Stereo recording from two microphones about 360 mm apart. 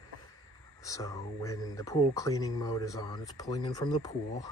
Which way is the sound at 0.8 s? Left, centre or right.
Centre.